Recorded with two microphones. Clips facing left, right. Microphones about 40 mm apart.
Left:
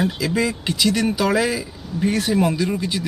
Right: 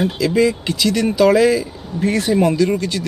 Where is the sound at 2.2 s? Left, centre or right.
Centre.